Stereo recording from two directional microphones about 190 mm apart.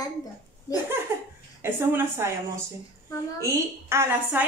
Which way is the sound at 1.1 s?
15° right (ahead or behind).